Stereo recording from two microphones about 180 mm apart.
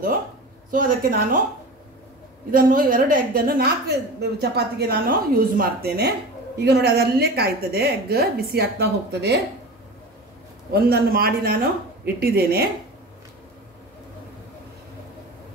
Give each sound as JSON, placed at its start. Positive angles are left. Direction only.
{"t": 0.7, "sound": "a woman's voice", "side_deg": -50}
{"t": 2.5, "sound": "a woman's voice", "side_deg": -50}
{"t": 10.7, "sound": "a woman's voice", "side_deg": -60}